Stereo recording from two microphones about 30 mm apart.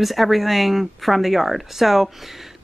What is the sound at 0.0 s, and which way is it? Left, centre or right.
Speech, centre.